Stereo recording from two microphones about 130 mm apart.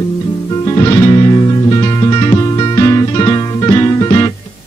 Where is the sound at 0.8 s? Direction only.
30° left (ahead or behind).